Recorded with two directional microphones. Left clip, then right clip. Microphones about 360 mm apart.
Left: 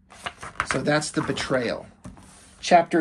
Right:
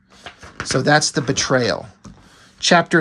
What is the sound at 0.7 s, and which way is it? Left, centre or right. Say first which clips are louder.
Speech: right 9 dB; centre.